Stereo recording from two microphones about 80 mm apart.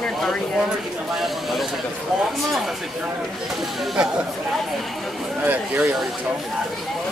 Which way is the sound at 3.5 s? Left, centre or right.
Centre.